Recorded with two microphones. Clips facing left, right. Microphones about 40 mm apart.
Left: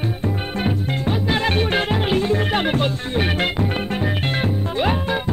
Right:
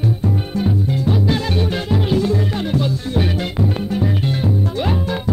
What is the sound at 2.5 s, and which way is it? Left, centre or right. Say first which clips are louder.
Music: left 1 dB; left.